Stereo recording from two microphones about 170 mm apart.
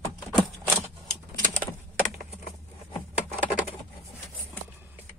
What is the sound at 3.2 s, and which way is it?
Bird, 10° right (ahead or behind).